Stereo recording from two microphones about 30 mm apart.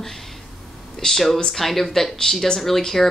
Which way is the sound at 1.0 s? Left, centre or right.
Left.